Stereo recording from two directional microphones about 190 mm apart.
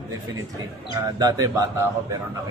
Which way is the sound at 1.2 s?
20° right (ahead or behind).